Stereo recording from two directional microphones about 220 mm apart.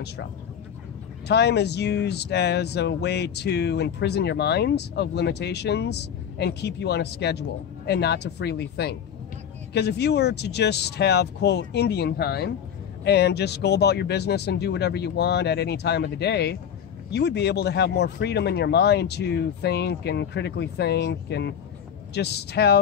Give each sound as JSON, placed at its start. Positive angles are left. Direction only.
{"t": 1.2, "sound": "speech", "side_deg": 50}